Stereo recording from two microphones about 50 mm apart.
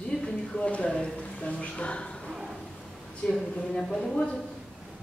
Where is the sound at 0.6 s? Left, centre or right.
Left.